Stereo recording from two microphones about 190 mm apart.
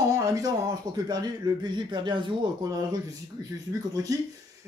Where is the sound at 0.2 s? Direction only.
15° right (ahead or behind).